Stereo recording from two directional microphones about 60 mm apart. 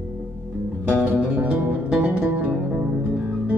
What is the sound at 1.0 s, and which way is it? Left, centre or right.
Music, right.